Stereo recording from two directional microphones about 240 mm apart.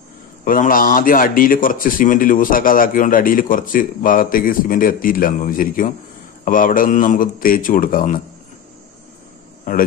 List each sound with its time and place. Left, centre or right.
0.5 s a man's voice: left